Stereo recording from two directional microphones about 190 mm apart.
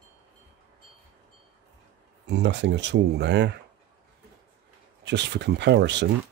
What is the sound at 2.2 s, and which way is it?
Speech, 65° right (ahead or behind).